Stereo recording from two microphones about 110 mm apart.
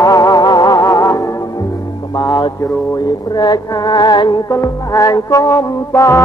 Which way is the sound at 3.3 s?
40° left (ahead or behind).